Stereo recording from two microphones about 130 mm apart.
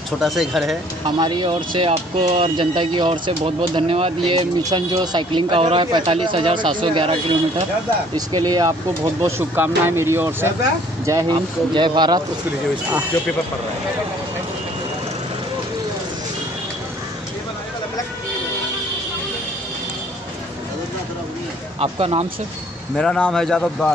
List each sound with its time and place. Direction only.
0.2 s a man's voice: centre (ahead or behind)
1.0 s speech: 35° right (ahead or behind)
2.5 s speech: 40° right (ahead or behind)
8.3 s speech: 30° right (ahead or behind)
11.7 s speech: 35° right (ahead or behind)
21.7 s speech: 45° right (ahead or behind)
22.9 s a man's voice: 5° left (ahead or behind)